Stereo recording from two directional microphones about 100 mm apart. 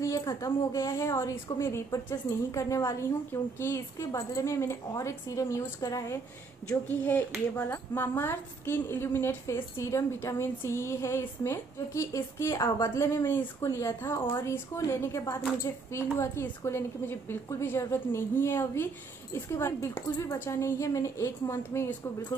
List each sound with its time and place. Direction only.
0.0 s a woman's voice: 30° left (ahead or behind)
6.9 s a woman's voice: 20° left (ahead or behind)